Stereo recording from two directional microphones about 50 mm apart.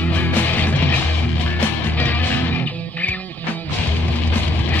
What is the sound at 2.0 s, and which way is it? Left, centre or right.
Music, left.